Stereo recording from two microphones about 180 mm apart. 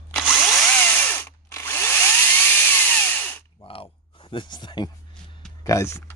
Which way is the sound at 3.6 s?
30° left (ahead or behind).